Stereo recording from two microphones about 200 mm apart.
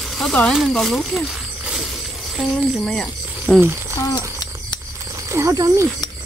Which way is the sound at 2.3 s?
Centre (ahead or behind).